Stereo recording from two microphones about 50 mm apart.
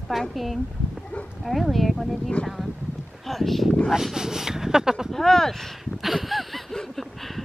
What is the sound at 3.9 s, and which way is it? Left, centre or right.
Speech, centre.